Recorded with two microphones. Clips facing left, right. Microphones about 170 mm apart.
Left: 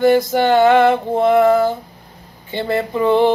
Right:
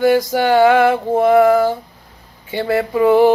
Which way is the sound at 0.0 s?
10° right (ahead or behind).